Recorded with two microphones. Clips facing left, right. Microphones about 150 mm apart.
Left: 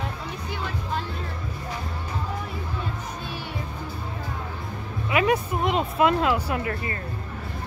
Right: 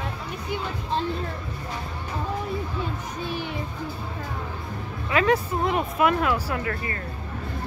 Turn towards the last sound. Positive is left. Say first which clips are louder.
# left 1 dB
turn(degrees=20)  # may be behind; listen again after turning